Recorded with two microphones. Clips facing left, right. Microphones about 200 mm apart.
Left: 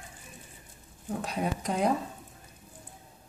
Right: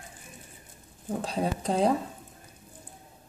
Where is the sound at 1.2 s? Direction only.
30° right (ahead or behind).